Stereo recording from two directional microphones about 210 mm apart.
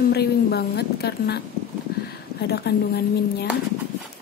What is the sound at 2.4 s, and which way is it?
Speech, 50° left (ahead or behind).